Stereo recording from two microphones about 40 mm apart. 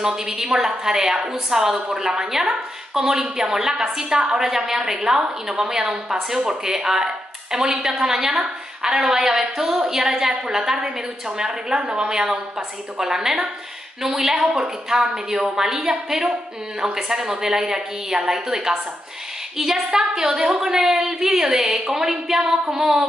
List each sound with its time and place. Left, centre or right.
0.0 s a woman's voice: centre
21.6 s a woman's voice: right
21.9 s a woman's voice: centre